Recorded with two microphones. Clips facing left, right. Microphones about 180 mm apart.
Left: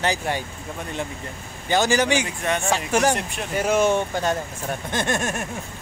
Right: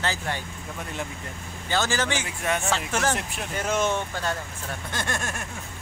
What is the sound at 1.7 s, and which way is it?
A man's voice, 15° left (ahead or behind).